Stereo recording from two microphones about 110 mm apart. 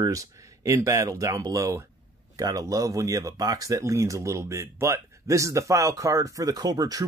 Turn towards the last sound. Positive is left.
turn(degrees=-35)  # may be behind; listen again after turning